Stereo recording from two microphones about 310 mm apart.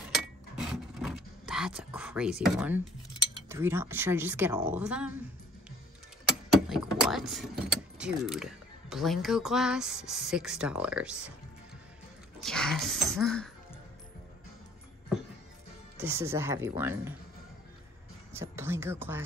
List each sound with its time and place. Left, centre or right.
0.1 s a sound: centre
3.4 s speech: centre
6.7 s speech: centre
12.4 s speech: centre
16.0 s speech: centre
18.3 s speech: centre